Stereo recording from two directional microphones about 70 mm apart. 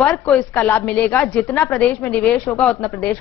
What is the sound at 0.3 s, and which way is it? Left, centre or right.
A woman's voice, left.